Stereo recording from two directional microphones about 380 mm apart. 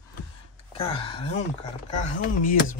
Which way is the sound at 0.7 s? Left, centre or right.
Centre.